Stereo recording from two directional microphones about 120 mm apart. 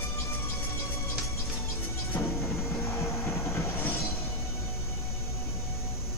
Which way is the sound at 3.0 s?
20° left (ahead or behind).